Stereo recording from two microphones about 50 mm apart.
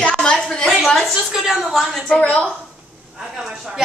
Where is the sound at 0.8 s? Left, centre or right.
Centre.